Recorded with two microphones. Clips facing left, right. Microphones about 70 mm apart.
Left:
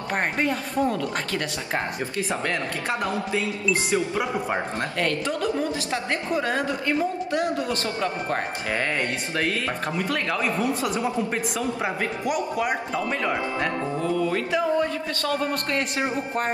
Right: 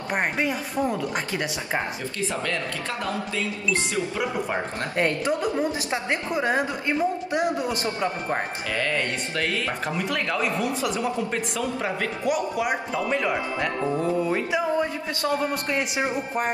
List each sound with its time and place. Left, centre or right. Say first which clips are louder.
0.1 s speech: even; centre
4.9 s a woman's voice: right 4 dB; right
8.7 s speech: right 1 dB; left
9.8 s speech: left 1 dB; centre
12.5 s speech: even; centre
13.9 s speech: even; right; by 16.4 s centre